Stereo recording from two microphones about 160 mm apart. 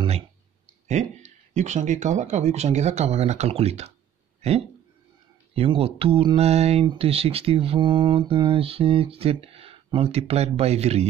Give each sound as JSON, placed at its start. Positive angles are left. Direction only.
{"t": 0.8, "sound": "speech", "side_deg": -45}